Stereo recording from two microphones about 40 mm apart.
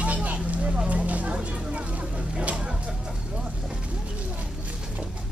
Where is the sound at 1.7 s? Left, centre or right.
Right.